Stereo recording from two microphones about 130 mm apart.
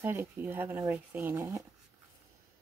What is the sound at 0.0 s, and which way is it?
Speech, 15° right (ahead or behind).